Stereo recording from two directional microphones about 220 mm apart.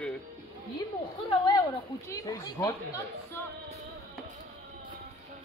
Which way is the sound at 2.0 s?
15° left (ahead or behind).